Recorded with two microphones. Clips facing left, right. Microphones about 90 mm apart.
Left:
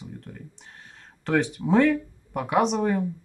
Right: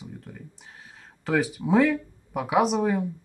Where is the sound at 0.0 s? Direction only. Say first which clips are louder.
Left 1 dB; 5° right (ahead or behind).